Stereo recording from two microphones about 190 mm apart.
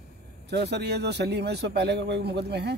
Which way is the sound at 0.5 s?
60° right (ahead or behind).